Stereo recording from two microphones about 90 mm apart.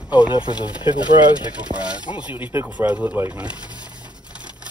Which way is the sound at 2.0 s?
55° left (ahead or behind).